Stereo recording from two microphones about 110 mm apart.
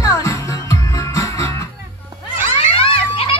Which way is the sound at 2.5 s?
55° left (ahead or behind).